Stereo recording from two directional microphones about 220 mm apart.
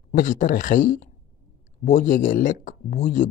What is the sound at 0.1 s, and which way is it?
Speech, 35° left (ahead or behind).